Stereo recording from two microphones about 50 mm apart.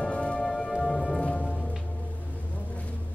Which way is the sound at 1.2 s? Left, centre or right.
Centre.